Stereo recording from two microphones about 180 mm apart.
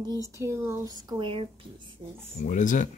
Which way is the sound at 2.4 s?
45° left (ahead or behind).